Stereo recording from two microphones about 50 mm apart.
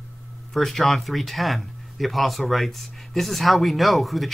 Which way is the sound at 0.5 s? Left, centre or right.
Centre.